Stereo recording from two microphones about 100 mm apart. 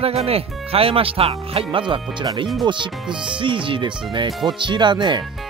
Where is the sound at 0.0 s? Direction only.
85° right.